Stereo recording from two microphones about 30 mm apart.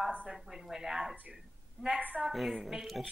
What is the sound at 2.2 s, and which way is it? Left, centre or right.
Speech, centre.